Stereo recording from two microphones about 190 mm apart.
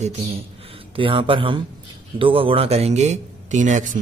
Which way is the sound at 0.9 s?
25° right (ahead or behind).